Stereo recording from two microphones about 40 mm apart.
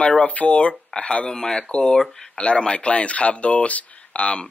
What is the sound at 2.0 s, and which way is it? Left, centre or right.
Speech, centre.